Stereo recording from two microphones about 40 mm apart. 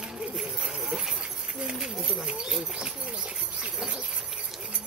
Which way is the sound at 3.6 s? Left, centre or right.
Right.